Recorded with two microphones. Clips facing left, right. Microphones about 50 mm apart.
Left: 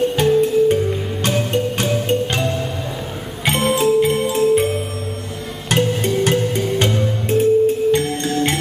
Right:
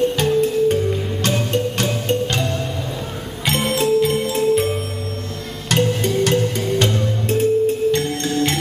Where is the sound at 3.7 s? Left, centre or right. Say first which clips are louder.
Left 1 dB; centre.